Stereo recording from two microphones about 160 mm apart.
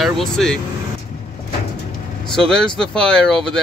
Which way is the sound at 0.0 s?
Centre (ahead or behind).